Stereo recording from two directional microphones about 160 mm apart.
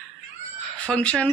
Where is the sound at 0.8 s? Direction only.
5° left (ahead or behind).